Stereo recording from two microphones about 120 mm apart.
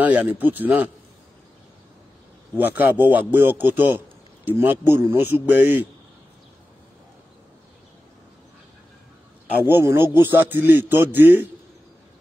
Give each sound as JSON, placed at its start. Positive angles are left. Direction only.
{"t": 0.0, "sound": "a man's voice", "side_deg": -10}
{"t": 2.5, "sound": "a man's voice", "side_deg": -15}
{"t": 9.7, "sound": "a man's voice", "side_deg": -20}